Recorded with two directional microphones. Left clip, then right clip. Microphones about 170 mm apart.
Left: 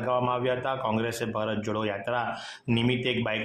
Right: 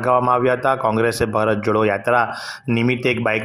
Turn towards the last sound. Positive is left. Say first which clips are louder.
# right 9 dB
turn(degrees=-35)  # may be behind; listen again after turning